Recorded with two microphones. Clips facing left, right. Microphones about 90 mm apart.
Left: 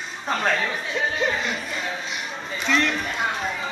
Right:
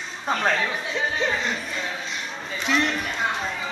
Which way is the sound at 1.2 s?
5° left (ahead or behind).